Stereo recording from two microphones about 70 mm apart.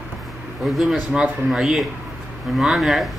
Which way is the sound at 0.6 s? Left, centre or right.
Centre.